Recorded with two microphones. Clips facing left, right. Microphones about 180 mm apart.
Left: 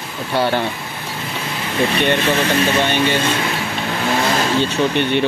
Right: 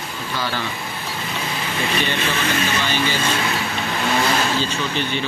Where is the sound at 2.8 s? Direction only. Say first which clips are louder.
Left 5 dB; 65° left (ahead or behind).